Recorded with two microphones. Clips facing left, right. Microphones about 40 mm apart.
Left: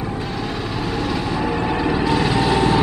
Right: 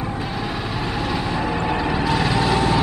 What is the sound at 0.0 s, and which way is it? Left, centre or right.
Vehicle, centre.